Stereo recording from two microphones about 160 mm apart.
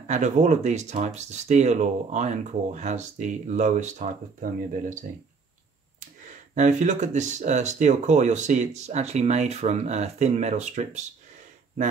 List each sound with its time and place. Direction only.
0.0 s speech: 50° right (ahead or behind)